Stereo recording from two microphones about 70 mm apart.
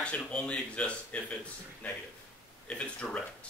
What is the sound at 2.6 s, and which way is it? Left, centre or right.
Speech, centre.